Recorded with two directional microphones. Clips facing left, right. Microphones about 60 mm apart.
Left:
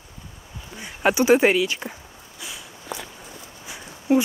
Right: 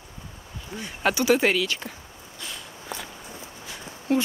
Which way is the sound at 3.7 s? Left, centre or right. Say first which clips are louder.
Left 4 dB; centre.